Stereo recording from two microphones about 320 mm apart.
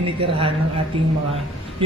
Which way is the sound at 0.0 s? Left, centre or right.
Centre.